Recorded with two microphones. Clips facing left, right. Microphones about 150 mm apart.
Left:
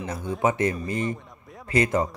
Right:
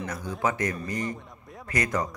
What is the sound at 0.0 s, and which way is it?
Speech, 25° left (ahead or behind).